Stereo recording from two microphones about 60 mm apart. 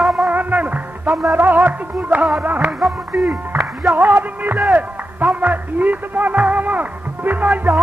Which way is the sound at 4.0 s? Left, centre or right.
Right.